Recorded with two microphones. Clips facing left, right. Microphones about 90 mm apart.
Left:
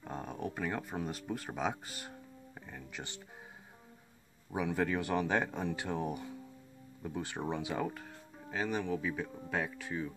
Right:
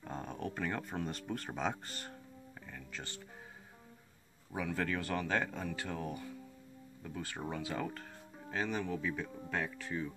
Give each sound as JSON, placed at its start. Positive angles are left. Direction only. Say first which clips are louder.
{"t": 0.0, "sound": "speech", "louder": "left 1 dB", "side_deg": 5}
{"t": 2.6, "sound": "music", "louder": "left 2 dB", "side_deg": 15}
{"t": 4.5, "sound": "speech", "louder": "left 3 dB", "side_deg": 15}